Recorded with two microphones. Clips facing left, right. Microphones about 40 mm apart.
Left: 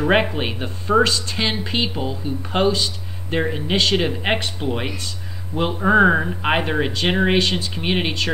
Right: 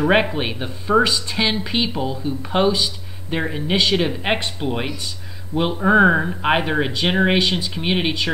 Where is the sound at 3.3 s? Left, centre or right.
Centre.